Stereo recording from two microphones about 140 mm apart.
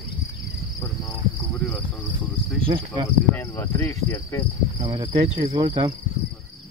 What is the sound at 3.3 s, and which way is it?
Speech, 20° left (ahead or behind).